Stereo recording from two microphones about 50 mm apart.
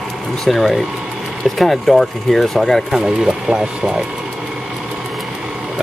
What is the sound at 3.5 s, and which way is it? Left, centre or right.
Speech, centre.